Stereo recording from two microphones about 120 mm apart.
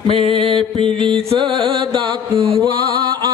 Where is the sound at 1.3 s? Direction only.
45° right (ahead or behind).